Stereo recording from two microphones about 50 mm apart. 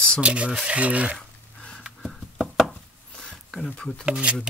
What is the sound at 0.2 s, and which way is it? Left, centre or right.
Rub, right.